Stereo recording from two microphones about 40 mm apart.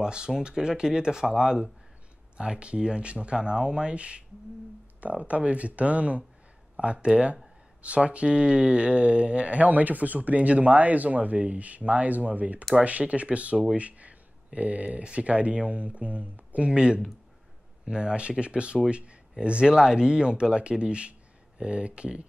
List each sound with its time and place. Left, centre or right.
0.0 s speech: right
9.6 s speech: right
19.7 s speech: centre